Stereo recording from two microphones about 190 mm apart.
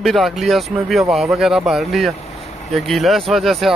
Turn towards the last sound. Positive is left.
turn(degrees=0)  # may be behind; listen again after turning